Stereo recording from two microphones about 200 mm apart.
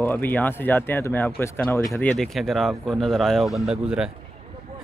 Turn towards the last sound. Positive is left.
turn(degrees=-5)  # may be behind; listen again after turning